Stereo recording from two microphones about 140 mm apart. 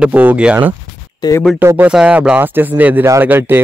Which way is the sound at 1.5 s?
15° right (ahead or behind).